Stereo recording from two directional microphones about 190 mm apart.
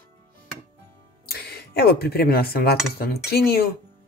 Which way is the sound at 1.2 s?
55° left (ahead or behind).